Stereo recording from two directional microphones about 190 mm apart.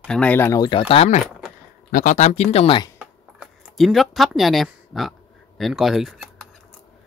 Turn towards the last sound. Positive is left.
turn(degrees=0)  # may be behind; listen again after turning